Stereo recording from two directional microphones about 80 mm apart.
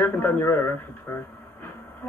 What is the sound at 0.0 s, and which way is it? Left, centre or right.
Speech, left.